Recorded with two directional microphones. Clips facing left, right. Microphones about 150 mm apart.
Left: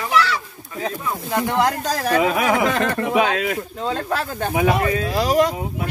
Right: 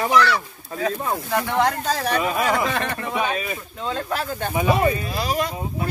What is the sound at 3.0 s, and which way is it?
Speech, 90° left.